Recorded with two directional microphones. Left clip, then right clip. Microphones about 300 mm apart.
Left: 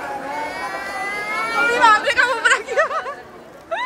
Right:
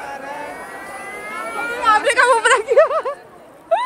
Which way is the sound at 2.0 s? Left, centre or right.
Centre.